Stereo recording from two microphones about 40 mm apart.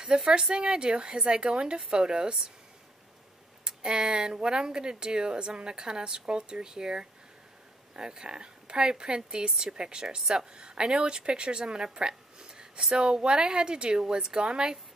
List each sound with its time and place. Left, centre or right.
0.0 s a woman's voice: right
3.6 s a woman's voice: right